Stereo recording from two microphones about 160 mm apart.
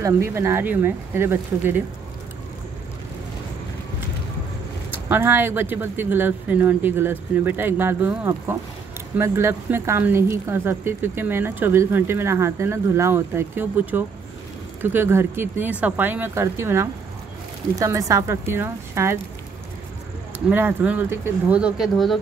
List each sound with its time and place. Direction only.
0.0 s speech: 15° right (ahead or behind)
5.0 s speech: 15° right (ahead or behind)
20.3 s speech: 10° right (ahead or behind)